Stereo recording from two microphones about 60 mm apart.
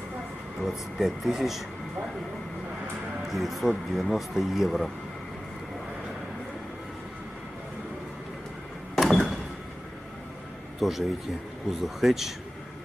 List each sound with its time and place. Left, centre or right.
0.6 s speech: centre
3.3 s speech: centre
8.9 s a sound: centre
10.8 s a man's voice: centre